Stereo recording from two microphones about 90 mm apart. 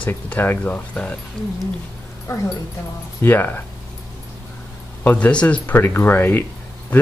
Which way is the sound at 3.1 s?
20° left (ahead or behind).